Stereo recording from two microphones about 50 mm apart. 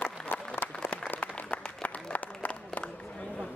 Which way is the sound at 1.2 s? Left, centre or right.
Left.